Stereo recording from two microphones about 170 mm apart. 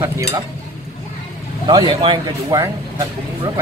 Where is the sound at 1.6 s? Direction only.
25° right (ahead or behind).